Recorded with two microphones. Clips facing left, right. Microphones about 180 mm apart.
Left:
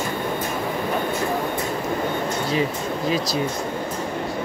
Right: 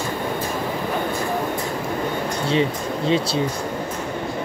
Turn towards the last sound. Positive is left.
turn(degrees=-30)  # may be behind; listen again after turning